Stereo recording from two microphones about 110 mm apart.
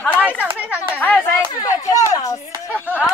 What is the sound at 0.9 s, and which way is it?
Speech, 15° left (ahead or behind).